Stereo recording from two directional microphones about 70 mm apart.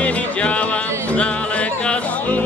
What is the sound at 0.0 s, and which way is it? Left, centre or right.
Music, centre.